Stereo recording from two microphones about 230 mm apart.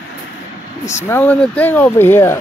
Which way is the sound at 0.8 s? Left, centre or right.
Centre.